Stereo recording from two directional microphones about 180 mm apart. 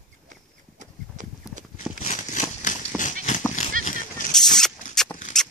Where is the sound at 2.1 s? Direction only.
45° left (ahead or behind).